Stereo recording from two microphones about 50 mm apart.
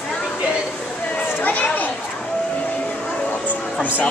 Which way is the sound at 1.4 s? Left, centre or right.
Left.